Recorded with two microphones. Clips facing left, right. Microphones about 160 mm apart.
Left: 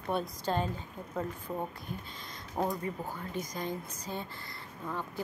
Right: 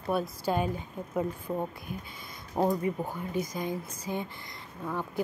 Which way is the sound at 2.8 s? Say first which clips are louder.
Right 6 dB; 15° right (ahead or behind).